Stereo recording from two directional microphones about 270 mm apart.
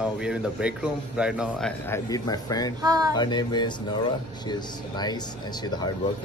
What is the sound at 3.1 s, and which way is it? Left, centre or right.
A man's voice, centre.